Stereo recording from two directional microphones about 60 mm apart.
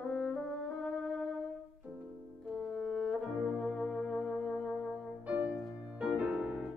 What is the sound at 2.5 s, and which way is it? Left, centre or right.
Music, centre.